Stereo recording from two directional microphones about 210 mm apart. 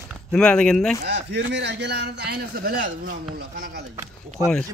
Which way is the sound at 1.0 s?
55° right (ahead or behind).